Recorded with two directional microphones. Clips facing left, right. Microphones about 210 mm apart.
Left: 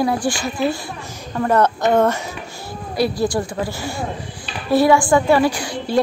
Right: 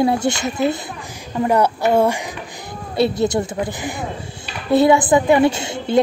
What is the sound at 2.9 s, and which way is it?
A woman's voice, 25° right (ahead or behind).